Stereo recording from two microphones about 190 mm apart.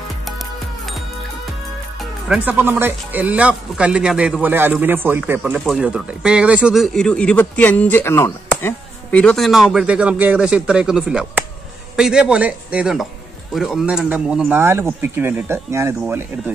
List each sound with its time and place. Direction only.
2.2 s speech: 5° right (ahead or behind)